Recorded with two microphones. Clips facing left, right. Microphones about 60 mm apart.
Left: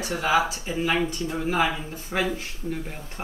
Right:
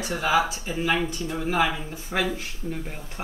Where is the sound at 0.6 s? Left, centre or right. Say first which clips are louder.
Even; left.